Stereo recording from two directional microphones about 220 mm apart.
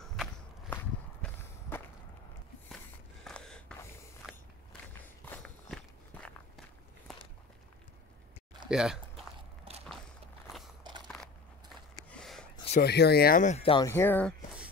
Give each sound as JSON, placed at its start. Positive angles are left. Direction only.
{"t": 0.0, "sound": "walk", "side_deg": 0}
{"t": 3.3, "sound": "gasp", "side_deg": 5}
{"t": 5.2, "sound": "walk", "side_deg": 5}
{"t": 8.6, "sound": "speech", "side_deg": -5}
{"t": 9.7, "sound": "a sound", "side_deg": -25}
{"t": 10.8, "sound": "biting", "side_deg": -20}
{"t": 11.9, "sound": "a sound", "side_deg": 0}
{"t": 12.5, "sound": "a sound", "side_deg": 30}
{"t": 12.8, "sound": "speech", "side_deg": 45}
{"t": 13.8, "sound": "speech", "side_deg": 10}